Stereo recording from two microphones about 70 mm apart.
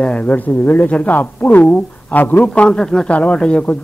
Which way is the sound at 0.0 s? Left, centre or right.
Centre.